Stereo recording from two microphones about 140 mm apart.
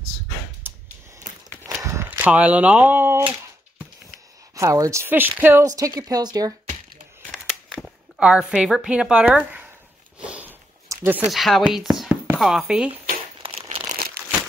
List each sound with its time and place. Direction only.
0.7 s a sound: 15° right (ahead or behind)
1.8 s horse: 25° right (ahead or behind)
2.0 s speech: 10° right (ahead or behind)
4.6 s speech: 20° right (ahead or behind)
7.2 s a sound: centre (ahead or behind)
11.2 s speech: centre (ahead or behind)
13.4 s crumpling: 45° right (ahead or behind)